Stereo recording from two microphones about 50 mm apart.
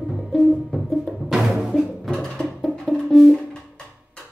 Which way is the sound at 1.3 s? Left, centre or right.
Centre.